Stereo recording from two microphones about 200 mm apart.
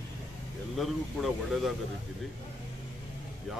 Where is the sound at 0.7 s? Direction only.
Centre (ahead or behind).